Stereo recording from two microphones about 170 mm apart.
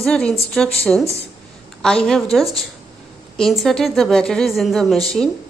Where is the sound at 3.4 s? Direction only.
Centre (ahead or behind).